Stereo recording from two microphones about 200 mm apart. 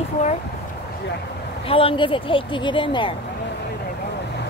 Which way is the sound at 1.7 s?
25° left (ahead or behind).